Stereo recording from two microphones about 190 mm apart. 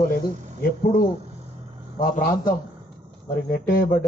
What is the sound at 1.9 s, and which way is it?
Speech, 45° left (ahead or behind).